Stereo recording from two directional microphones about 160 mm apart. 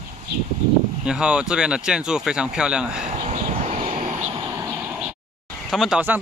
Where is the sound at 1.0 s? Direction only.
5° right (ahead or behind).